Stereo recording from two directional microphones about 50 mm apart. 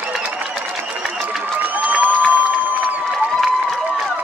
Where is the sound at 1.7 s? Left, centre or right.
Right.